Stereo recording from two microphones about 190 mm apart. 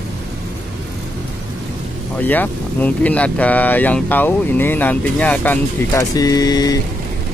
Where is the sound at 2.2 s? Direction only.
10° left (ahead or behind).